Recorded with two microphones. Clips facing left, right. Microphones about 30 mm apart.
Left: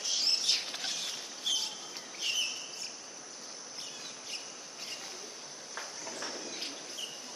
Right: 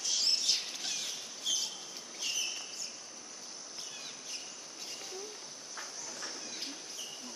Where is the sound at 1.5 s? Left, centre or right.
Left.